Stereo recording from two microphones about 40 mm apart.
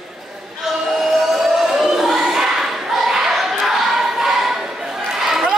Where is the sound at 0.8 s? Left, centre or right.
Centre.